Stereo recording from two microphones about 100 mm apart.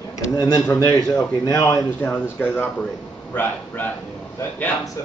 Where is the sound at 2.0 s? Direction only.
20° left (ahead or behind).